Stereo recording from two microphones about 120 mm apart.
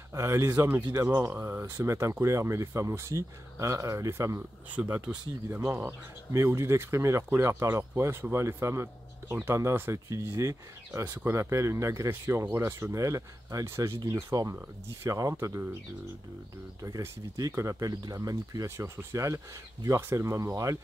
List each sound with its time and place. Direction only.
0.1 s speech: 25° right (ahead or behind)
16.8 s speech: 30° right (ahead or behind)